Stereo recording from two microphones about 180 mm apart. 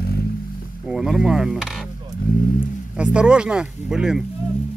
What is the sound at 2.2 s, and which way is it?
Vehicle, 55° left (ahead or behind).